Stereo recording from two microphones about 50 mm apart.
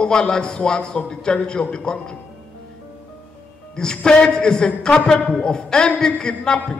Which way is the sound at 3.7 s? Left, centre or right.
Centre.